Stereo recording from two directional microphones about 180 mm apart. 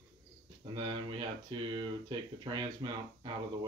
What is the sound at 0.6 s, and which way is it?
Speech, 25° right (ahead or behind).